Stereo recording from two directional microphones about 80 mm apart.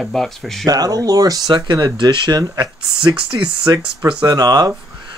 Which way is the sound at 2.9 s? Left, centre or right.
Right.